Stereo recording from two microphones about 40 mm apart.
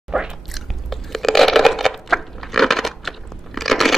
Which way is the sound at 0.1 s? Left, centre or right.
Centre.